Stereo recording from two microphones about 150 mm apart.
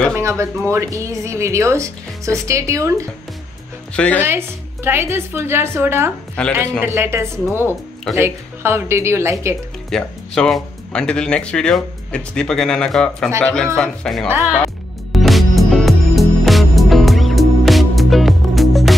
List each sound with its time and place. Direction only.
0.1 s speech: 20° right (ahead or behind)
3.9 s speech: 5° left (ahead or behind)
4.2 s a woman's voice: 15° right (ahead or behind)
6.4 s speech: 5° left (ahead or behind)
6.8 s a woman's voice: 15° right (ahead or behind)
9.8 s speech: 5° left (ahead or behind)
15.1 s music: centre (ahead or behind)